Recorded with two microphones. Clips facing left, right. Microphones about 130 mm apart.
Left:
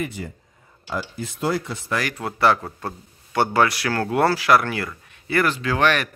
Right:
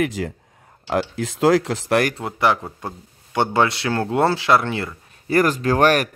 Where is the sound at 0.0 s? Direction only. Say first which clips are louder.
Right 7 dB; 90° right.